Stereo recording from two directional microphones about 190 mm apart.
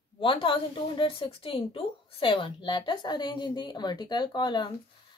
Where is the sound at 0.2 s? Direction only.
25° left (ahead or behind).